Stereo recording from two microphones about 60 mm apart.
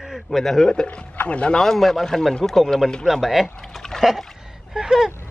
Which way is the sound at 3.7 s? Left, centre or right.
Centre.